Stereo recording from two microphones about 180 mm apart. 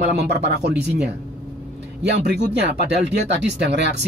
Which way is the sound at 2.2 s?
65° right (ahead or behind).